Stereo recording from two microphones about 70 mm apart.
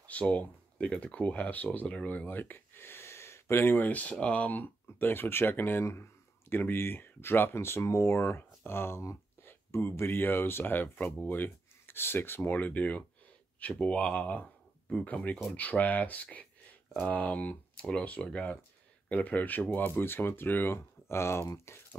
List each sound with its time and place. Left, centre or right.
0.1 s speech: centre
15.5 s speech: left